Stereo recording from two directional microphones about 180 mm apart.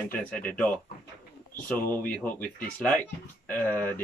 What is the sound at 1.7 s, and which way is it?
Speech, 10° left (ahead or behind).